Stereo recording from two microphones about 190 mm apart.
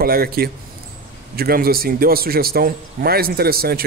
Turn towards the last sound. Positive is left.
turn(degrees=-50)  # may be behind; listen again after turning